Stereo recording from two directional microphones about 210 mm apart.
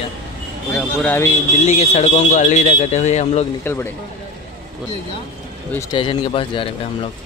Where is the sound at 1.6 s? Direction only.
30° left (ahead or behind).